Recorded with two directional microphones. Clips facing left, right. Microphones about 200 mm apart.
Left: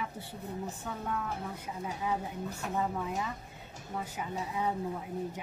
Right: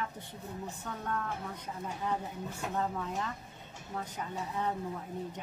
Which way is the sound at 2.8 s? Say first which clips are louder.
Left 2 dB; 10° left (ahead or behind).